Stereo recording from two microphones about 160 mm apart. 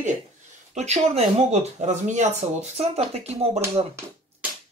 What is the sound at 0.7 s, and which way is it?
Speech, 45° right (ahead or behind).